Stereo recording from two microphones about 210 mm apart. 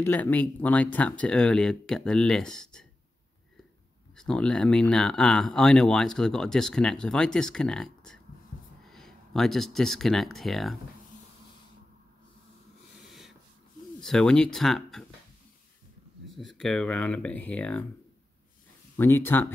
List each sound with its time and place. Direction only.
0.0 s speech: 10° left (ahead or behind)
4.1 s speech: 5° left (ahead or behind)
14.0 s speech: 5° left (ahead or behind)
16.3 s speech: centre (ahead or behind)
18.9 s speech: 10° left (ahead or behind)